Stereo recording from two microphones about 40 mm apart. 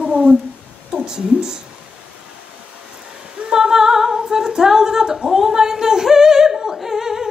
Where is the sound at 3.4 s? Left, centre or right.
Centre.